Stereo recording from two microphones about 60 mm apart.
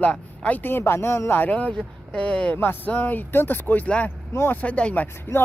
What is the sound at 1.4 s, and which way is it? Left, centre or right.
Speech, left.